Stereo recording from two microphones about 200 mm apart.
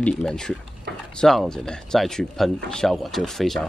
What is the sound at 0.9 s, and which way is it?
Speech, 55° right (ahead or behind).